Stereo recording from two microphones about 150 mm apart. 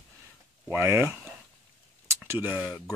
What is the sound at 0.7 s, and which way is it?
Speech, 15° right (ahead or behind).